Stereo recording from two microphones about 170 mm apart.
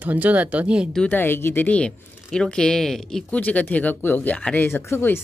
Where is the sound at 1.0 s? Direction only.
10° left (ahead or behind).